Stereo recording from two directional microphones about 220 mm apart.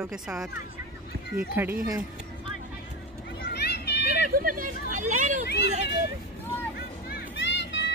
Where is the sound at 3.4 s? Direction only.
50° left (ahead or behind).